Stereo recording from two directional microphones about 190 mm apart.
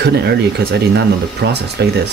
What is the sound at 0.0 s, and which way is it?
Speech, 60° right (ahead or behind).